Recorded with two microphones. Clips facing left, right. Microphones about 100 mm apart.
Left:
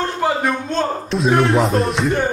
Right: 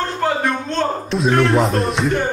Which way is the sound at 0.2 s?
10° left (ahead or behind).